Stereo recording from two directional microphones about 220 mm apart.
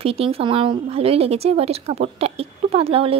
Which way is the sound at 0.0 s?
25° right (ahead or behind).